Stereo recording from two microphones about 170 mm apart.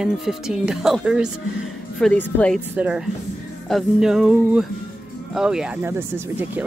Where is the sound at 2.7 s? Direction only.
5° right (ahead or behind).